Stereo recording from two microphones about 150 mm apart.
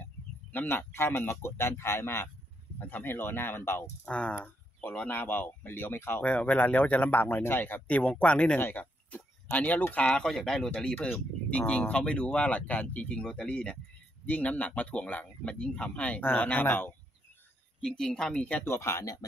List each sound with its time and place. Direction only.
0.5 s speech: 10° left (ahead or behind)